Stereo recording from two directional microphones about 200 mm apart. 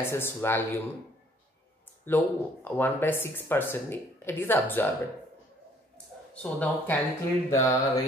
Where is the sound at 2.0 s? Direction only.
10° left (ahead or behind).